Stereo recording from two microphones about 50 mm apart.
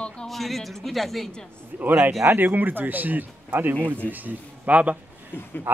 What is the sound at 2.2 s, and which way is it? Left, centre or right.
Speech, right.